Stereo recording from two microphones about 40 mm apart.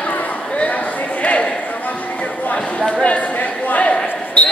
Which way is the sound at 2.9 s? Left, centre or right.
Left.